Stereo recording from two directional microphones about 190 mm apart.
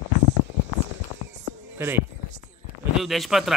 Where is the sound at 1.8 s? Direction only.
15° right (ahead or behind).